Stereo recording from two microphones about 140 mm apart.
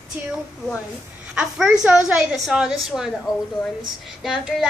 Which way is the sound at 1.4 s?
5° right (ahead or behind).